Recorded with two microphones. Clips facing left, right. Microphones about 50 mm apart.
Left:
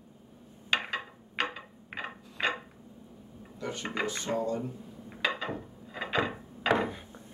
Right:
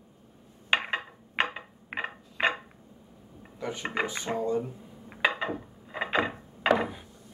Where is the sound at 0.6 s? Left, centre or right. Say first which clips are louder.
Right 3 dB; right.